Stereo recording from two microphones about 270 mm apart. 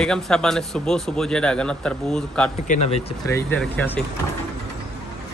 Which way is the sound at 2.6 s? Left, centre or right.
Left.